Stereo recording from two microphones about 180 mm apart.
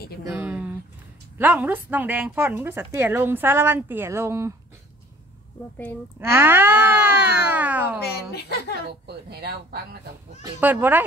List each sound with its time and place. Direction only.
0.3 s a sound: 5° right (ahead or behind)
1.4 s a woman's voice: 10° right (ahead or behind)
6.3 s speech: 10° right (ahead or behind)
8.0 s speech: 65° left (ahead or behind)
9.0 s speech: 60° right (ahead or behind)
10.6 s a woman's voice: 10° right (ahead or behind)